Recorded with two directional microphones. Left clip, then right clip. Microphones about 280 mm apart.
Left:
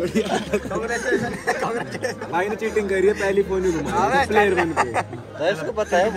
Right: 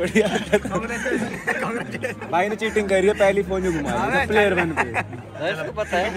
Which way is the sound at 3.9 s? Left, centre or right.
Left.